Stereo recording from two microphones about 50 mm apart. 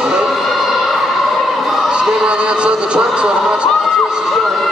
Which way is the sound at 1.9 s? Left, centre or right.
Centre.